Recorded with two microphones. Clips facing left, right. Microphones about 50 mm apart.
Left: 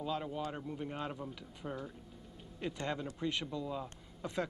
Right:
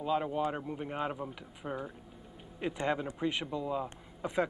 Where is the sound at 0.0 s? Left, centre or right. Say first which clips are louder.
Right 7 dB; right.